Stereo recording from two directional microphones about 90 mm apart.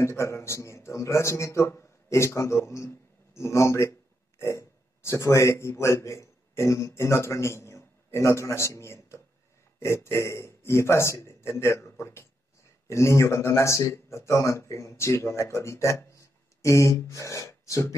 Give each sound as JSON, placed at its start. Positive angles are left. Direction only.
{"t": 0.0, "sound": "speech", "side_deg": 30}